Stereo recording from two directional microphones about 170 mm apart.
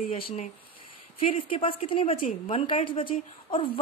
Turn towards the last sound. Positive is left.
turn(degrees=30)  # may be behind; listen again after turning